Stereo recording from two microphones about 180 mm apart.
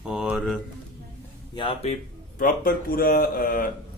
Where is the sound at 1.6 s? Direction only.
30° left (ahead or behind).